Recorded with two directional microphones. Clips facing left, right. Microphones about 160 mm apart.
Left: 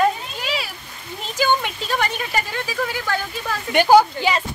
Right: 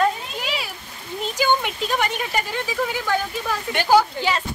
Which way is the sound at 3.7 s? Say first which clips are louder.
Left 4 dB; 15° left (ahead or behind).